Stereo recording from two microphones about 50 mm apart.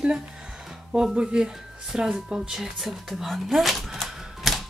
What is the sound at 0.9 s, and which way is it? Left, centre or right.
Speech, centre.